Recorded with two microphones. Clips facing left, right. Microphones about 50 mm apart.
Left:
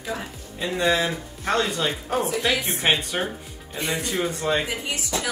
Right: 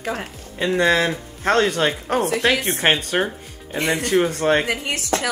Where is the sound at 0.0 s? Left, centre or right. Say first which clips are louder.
Right 4 dB; right.